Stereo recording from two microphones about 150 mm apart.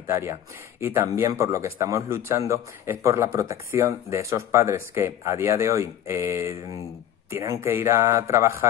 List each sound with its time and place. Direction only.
0.0 s speech: 15° right (ahead or behind)